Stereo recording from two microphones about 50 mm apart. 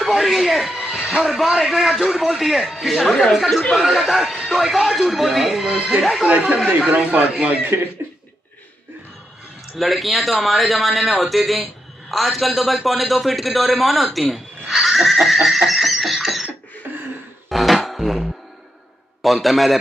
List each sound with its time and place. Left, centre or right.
0.0 s a man's voice: centre
5.7 s speech: centre
9.8 s a man's voice: centre
17.5 s music: centre
19.2 s a man's voice: centre